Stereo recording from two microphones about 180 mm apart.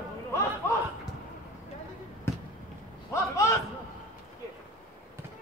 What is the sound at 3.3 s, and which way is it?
Speech, 15° left (ahead or behind).